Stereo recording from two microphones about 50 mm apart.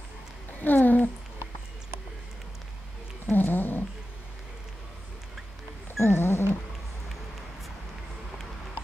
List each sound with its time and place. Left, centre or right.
0.6 s speech: left
3.3 s cat: left
5.9 s roaring cats: left